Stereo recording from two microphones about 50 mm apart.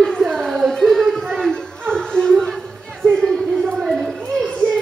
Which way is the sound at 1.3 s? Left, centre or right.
Centre.